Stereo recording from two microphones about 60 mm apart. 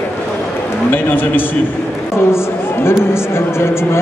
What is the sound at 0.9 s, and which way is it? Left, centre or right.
A man's voice, left.